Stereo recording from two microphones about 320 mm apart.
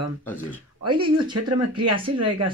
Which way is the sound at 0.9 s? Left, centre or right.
Centre.